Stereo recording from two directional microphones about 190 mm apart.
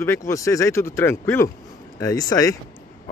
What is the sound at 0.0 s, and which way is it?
Speech, 15° left (ahead or behind).